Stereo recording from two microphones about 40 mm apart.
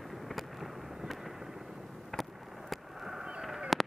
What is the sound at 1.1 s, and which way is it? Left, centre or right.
Fireworks, centre.